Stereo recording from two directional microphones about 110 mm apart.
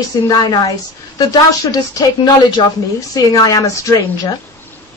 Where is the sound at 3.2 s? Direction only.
35° left (ahead or behind).